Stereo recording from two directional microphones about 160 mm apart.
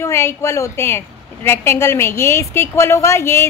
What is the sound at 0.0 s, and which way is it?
A woman's voice, 15° left (ahead or behind).